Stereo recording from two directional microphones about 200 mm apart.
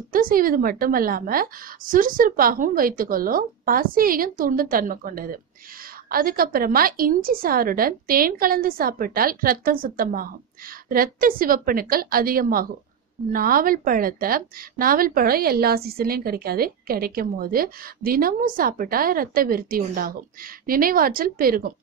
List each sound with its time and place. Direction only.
0.1 s a woman's voice: 45° right (ahead or behind)